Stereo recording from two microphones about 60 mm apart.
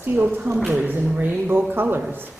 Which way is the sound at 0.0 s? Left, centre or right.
Right.